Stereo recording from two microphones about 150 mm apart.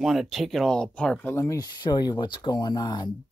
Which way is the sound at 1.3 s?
20° left (ahead or behind).